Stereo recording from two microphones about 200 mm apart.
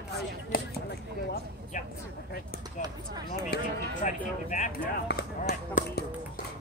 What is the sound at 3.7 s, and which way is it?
Speech, 40° left (ahead or behind).